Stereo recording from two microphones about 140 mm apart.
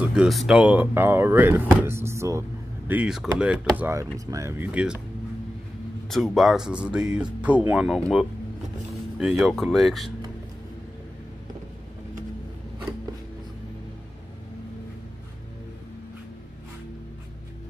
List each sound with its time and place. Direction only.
0.0 s speech: 5° right (ahead or behind)
2.9 s speech: 5° right (ahead or behind)
6.0 s speech: centre (ahead or behind)